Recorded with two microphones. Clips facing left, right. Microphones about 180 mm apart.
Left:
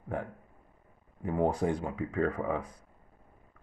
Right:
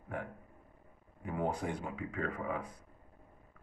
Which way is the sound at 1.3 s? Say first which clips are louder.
Left 7 dB; 35° left (ahead or behind).